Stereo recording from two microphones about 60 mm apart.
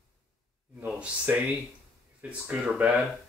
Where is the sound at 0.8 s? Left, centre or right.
Right.